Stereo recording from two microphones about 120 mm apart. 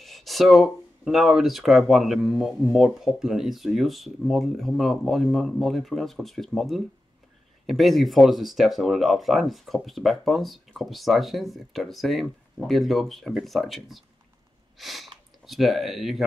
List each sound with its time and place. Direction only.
0.0 s speech: centre (ahead or behind)